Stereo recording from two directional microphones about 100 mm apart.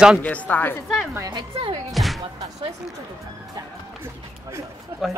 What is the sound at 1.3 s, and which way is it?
Speech, 55° right (ahead or behind).